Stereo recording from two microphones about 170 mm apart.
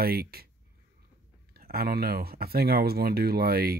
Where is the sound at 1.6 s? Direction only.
60° right (ahead or behind).